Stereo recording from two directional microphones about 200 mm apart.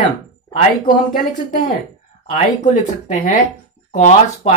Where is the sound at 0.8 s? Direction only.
40° left (ahead or behind).